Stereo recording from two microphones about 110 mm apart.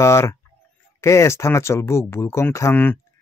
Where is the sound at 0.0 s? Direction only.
25° left (ahead or behind).